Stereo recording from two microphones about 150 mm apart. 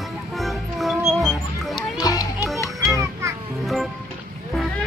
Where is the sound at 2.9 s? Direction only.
20° right (ahead or behind).